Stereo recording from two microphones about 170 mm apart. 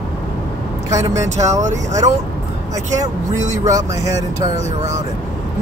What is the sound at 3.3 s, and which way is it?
Speech, 45° right (ahead or behind).